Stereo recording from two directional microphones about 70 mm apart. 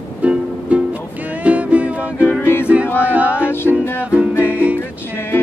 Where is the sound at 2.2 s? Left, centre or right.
Left.